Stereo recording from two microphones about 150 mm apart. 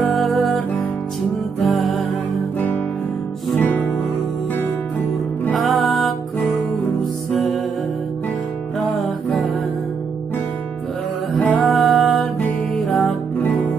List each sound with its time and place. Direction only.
0.1 s music: centre (ahead or behind)
3.5 s music: 10° left (ahead or behind)
5.4 s music: 5° left (ahead or behind)
7.3 s music: centre (ahead or behind)
8.7 s music: centre (ahead or behind)
11.3 s music: 10° left (ahead or behind)